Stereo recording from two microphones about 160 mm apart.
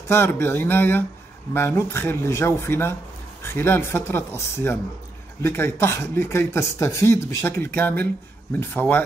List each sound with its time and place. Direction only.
0.1 s speech: 15° left (ahead or behind)